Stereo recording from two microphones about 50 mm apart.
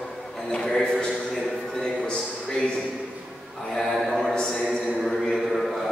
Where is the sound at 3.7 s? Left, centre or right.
Centre.